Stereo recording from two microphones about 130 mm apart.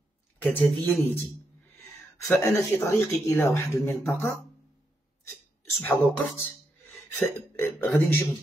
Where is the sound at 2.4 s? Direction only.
20° left (ahead or behind).